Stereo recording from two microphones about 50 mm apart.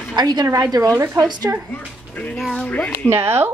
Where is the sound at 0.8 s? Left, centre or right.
Right.